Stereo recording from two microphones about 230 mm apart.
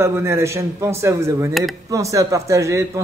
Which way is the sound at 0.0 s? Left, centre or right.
Centre.